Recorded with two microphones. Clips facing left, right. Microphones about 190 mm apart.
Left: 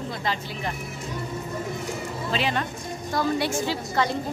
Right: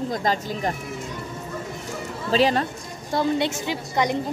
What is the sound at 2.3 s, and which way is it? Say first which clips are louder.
Speech: right 7 dB; 35° right (ahead or behind).